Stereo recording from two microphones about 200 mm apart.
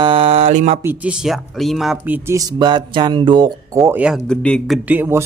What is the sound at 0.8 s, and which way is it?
Speech, 5° right (ahead or behind).